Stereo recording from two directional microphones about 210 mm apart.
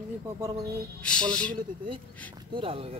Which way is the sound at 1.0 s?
5° left (ahead or behind).